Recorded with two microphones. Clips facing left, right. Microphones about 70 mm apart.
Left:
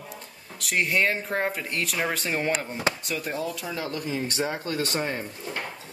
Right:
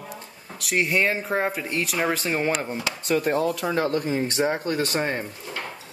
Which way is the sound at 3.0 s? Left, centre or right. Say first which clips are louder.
Right 8 dB; right.